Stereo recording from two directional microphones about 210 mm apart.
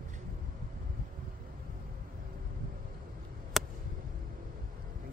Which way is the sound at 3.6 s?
Centre (ahead or behind).